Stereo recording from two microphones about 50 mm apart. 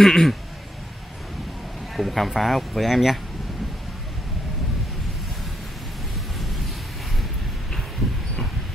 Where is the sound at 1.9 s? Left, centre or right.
Centre.